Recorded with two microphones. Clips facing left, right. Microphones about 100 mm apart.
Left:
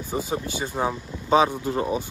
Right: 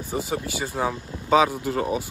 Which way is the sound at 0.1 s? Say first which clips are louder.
Even; 25° left (ahead or behind).